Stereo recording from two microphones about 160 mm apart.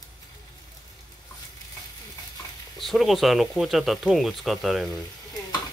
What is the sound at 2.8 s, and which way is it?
Speech, centre (ahead or behind).